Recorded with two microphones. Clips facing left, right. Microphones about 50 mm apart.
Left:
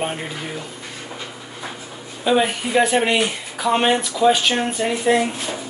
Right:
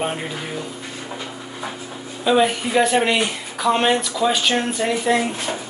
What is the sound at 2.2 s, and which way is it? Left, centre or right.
Speech, centre.